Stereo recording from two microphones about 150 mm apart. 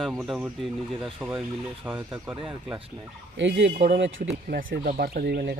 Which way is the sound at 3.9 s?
85° right.